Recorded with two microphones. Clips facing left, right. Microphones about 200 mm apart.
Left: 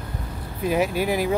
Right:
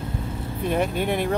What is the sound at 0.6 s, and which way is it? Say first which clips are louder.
Speech: left 2 dB; 5° left (ahead or behind).